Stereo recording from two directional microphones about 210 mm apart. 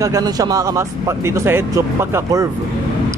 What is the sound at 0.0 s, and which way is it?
Speech, 15° right (ahead or behind).